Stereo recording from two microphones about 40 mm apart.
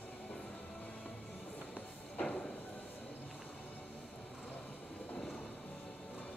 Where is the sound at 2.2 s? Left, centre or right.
Left.